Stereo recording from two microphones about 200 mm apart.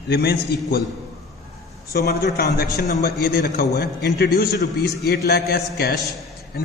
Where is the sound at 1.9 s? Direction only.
50° left (ahead or behind).